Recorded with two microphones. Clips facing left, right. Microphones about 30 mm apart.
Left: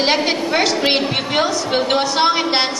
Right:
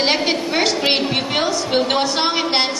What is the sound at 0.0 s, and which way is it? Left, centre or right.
A woman's voice, centre.